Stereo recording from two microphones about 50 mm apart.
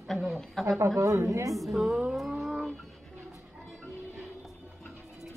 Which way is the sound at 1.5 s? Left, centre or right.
Centre.